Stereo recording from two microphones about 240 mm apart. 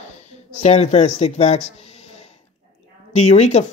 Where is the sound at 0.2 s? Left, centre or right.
Left.